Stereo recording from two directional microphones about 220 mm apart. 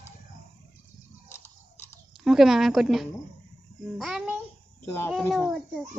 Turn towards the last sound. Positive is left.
turn(degrees=0)  # may be behind; listen again after turning